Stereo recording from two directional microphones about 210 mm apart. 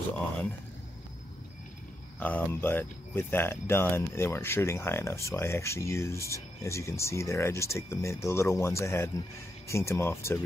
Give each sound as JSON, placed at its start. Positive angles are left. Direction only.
{"t": 2.1, "sound": "speech", "side_deg": 10}